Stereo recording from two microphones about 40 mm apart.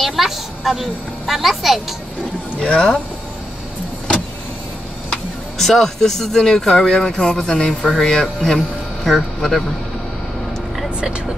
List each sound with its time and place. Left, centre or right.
0.0 s a woman's voice: centre
2.6 s speech: centre
5.6 s speech: centre
7.2 s speech: left
8.0 s speech: centre